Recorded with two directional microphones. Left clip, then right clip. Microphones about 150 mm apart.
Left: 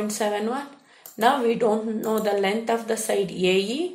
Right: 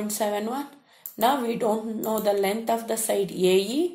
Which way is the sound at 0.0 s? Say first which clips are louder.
Left 2 dB; 35° right (ahead or behind).